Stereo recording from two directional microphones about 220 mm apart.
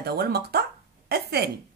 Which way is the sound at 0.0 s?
45° right (ahead or behind).